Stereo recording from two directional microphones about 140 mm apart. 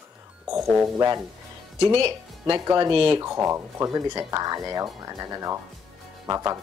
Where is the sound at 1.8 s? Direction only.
35° right (ahead or behind).